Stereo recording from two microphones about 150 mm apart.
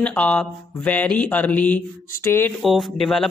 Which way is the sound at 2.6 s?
Centre (ahead or behind).